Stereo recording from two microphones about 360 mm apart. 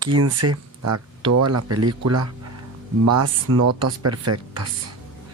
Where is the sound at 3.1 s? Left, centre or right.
Right.